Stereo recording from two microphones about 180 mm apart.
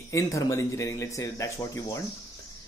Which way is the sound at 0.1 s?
15° left (ahead or behind).